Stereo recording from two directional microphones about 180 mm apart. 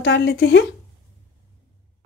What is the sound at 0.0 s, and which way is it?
Speech, 75° left (ahead or behind).